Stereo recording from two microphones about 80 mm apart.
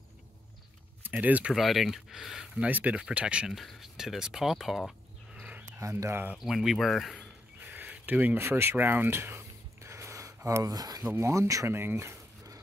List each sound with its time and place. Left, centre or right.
1.0 s speech: right
1.5 s speech: centre
2.7 s speech: centre
5.4 s a sound: centre
5.8 s speech: right
6.3 s speech: centre
7.6 s a sound: right
8.4 s a sound: right
10.7 s speech: right
11.1 s speech: right